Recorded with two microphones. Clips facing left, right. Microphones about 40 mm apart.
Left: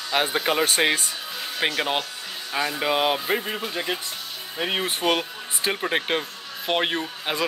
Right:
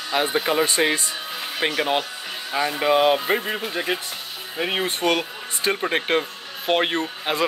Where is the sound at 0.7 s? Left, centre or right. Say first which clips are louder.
Right 1 dB; left.